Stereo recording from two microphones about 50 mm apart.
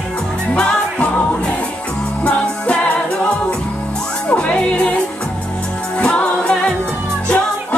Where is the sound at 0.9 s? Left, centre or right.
Left.